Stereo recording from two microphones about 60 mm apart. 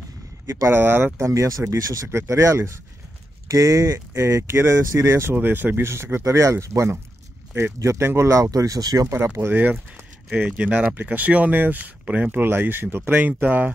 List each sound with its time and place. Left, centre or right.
0.7 s speech: right
1.1 s speech: right
2.0 s speech: right
3.4 s speech: right
5.3 s speech: right
6.2 s speech: right
8.3 s speech: right
9.4 s speech: right
10.3 s speech: centre
12.4 s speech: right